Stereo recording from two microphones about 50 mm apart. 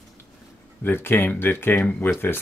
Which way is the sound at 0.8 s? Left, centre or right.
Left.